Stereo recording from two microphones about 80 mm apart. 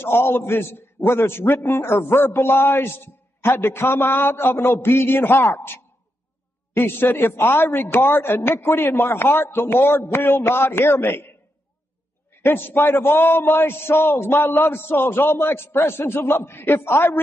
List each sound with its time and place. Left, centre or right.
0.0 s a man's voice: left
12.4 s a man's voice: left